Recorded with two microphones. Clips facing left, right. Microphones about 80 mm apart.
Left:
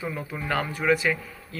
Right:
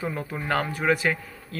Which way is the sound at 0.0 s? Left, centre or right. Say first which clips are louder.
Right 2 dB; right.